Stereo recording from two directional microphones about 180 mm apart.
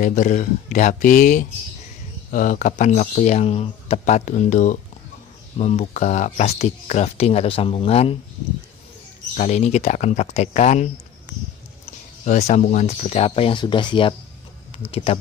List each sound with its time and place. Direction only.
0.0 s speech: 45° left (ahead or behind)
9.4 s speech: 40° left (ahead or behind)
12.3 s speech: 40° left (ahead or behind)